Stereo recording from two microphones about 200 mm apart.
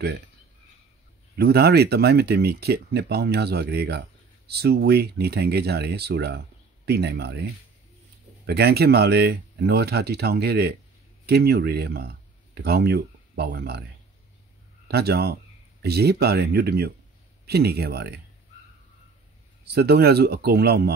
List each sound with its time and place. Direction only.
1.3 s speech: 55° right (ahead or behind)
8.5 s speech: 55° right (ahead or behind)
14.9 s speech: 55° right (ahead or behind)
19.6 s speech: 50° right (ahead or behind)